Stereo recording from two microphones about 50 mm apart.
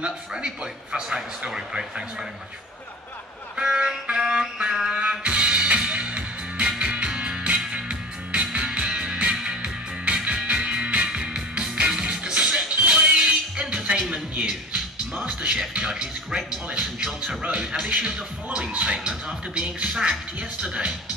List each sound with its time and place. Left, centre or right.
0.0 s speech: centre
3.5 s music: centre
18.0 s speech: right